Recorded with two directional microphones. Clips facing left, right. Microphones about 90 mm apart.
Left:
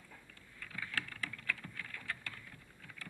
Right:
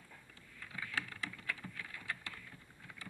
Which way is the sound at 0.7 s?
10° right (ahead or behind).